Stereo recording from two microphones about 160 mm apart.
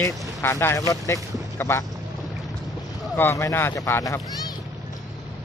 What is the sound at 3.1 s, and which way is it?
Speech, 15° left (ahead or behind).